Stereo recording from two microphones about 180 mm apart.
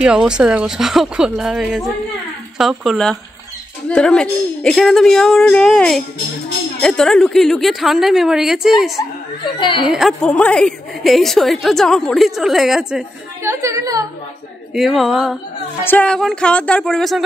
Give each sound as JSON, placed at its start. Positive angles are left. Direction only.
{"t": 0.0, "sound": "a woman's voice", "side_deg": -5}
{"t": 9.6, "sound": "speech", "side_deg": 25}
{"t": 9.8, "sound": "a woman's voice", "side_deg": 0}
{"t": 13.4, "sound": "a woman's voice", "side_deg": -15}
{"t": 14.7, "sound": "a woman's voice", "side_deg": 0}
{"t": 15.8, "sound": "a woman's voice", "side_deg": 10}